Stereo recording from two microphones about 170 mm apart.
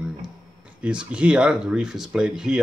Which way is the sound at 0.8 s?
5° right (ahead or behind).